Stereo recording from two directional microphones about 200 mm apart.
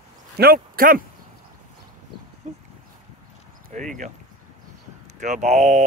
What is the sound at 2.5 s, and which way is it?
Dog, 35° right (ahead or behind).